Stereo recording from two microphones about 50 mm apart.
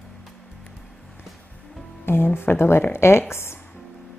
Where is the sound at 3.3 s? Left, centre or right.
Left.